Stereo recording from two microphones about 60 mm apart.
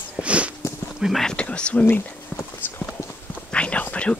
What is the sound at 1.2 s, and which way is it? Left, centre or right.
Speech, centre.